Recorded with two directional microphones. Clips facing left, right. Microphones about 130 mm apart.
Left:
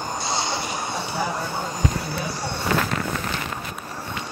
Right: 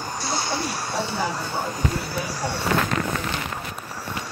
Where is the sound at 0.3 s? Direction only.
20° left (ahead or behind).